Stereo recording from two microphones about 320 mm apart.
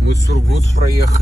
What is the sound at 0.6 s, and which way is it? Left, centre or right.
Speech, left.